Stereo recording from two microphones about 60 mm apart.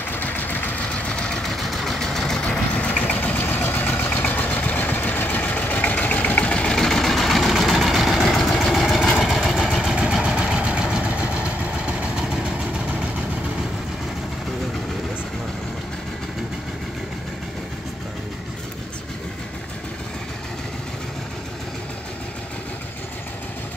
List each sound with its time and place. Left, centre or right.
0.1 s vehicle: left
0.8 s vehicle: centre
1.4 s vehicle: centre
2.7 s vehicle: left
6.5 s vehicle: centre
9.9 s vehicle: centre